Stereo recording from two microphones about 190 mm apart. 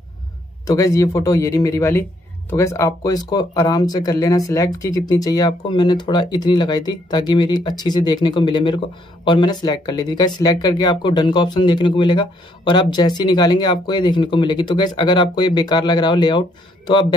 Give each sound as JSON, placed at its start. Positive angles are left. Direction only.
{"t": 0.7, "sound": "a man's voice", "side_deg": 15}